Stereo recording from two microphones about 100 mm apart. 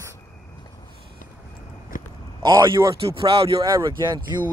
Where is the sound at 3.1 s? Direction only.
60° right (ahead or behind).